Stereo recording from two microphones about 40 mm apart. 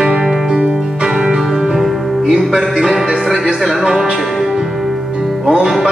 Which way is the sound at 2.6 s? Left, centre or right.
Centre.